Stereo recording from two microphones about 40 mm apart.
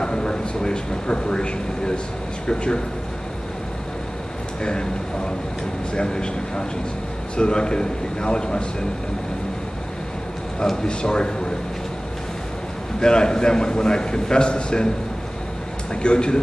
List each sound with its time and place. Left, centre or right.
0.0 s a man's voice: centre
5.9 s a man's voice: left
10.9 s a man's voice: left
13.0 s a man's voice: centre
15.9 s a man's voice: left